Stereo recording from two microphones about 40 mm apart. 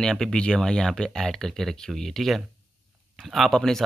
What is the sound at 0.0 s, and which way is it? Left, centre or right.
Speech, centre.